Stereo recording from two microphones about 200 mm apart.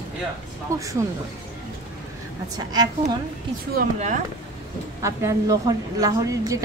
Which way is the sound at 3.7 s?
40° right (ahead or behind).